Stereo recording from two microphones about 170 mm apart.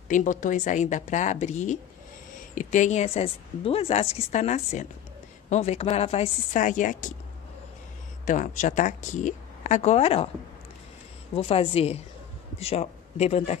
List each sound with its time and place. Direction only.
0.1 s a woman's voice: 50° left (ahead or behind)
8.3 s speech: 45° left (ahead or behind)
11.3 s a woman's voice: 35° left (ahead or behind)